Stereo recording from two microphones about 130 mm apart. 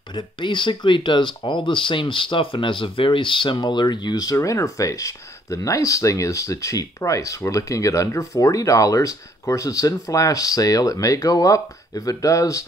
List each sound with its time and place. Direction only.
0.1 s speech: 40° left (ahead or behind)